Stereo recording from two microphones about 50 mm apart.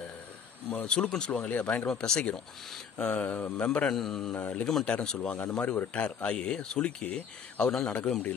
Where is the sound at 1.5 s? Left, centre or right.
Left.